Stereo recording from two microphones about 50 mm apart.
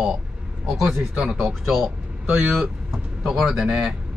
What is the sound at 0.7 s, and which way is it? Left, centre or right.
Speech, centre.